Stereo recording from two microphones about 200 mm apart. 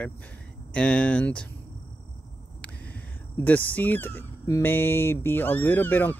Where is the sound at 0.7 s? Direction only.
5° left (ahead or behind).